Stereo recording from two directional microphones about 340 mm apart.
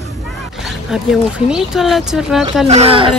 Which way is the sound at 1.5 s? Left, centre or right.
Centre.